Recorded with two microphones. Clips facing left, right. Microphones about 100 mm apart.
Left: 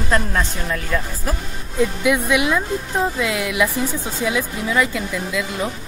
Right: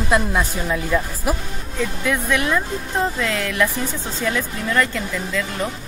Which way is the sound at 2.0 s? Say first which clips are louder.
Left 1 dB; 10° left (ahead or behind).